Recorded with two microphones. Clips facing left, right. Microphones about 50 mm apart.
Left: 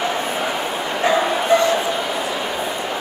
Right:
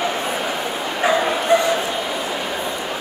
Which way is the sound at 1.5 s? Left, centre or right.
Right.